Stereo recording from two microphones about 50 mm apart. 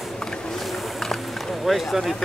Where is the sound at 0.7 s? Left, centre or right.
Centre.